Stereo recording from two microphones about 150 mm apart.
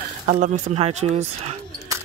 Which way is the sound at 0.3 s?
55° right (ahead or behind).